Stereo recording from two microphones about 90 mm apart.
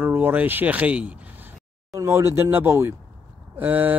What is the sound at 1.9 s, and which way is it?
A man's voice, 30° right (ahead or behind).